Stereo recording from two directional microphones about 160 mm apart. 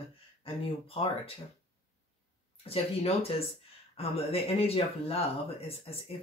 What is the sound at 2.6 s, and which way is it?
Speech, 35° left (ahead or behind).